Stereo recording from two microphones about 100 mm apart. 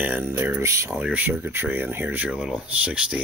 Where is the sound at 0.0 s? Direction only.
20° right (ahead or behind).